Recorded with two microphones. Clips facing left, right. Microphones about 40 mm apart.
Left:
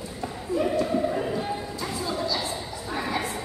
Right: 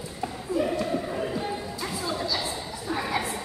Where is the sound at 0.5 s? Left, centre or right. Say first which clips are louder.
Left 2 dB; centre.